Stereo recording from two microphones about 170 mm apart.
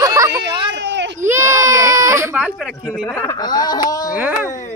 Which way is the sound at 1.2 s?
15° right (ahead or behind).